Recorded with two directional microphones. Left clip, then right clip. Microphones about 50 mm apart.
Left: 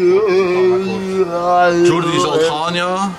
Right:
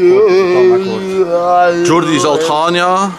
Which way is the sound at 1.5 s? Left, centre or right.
Centre.